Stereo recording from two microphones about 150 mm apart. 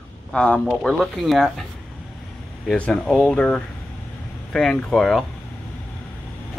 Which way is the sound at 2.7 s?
5° left (ahead or behind).